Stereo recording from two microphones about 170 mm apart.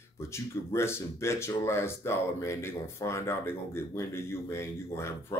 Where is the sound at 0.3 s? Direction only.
15° left (ahead or behind).